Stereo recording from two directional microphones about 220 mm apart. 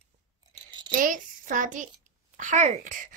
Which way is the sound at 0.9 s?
35° right (ahead or behind).